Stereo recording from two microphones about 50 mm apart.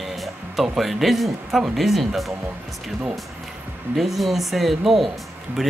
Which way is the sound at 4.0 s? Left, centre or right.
Centre.